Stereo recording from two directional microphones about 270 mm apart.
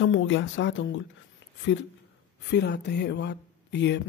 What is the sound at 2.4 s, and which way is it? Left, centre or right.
A woman's voice, left.